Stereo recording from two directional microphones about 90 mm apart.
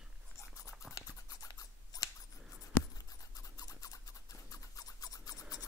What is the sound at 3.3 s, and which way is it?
Toothbrush, 40° left (ahead or behind).